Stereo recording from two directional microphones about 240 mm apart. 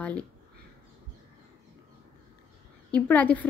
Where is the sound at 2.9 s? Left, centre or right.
Centre.